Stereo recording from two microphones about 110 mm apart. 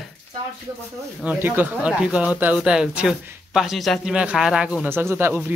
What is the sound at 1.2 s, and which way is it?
Speech, 20° right (ahead or behind).